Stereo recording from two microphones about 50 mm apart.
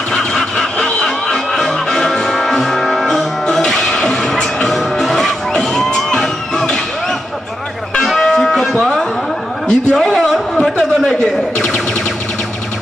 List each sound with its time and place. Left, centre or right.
0.1 s music: centre
8.2 s music: centre
9.7 s a sound: centre
10.0 s music: centre